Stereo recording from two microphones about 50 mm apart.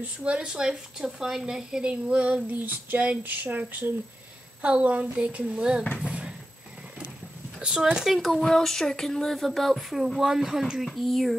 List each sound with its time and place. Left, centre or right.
0.0 s a woman's voice: right
2.5 s speech: right
4.6 s a woman's voice: right
7.6 s speech: centre